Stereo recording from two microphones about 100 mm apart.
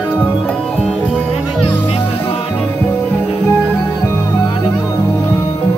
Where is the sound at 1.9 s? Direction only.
75° left (ahead or behind).